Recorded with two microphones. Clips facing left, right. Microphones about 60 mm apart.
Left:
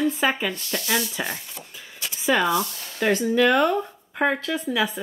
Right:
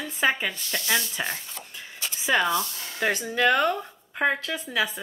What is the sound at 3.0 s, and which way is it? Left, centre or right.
Speech, centre.